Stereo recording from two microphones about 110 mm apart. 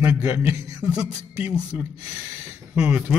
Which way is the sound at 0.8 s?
10° right (ahead or behind).